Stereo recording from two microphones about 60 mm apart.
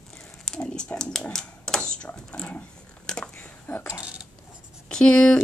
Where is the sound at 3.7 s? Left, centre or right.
Left.